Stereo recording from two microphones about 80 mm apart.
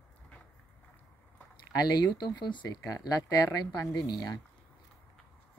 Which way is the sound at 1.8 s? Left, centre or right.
Left.